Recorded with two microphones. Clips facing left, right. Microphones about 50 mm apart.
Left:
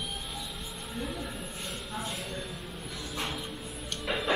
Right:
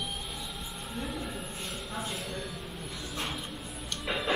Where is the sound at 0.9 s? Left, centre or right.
Centre.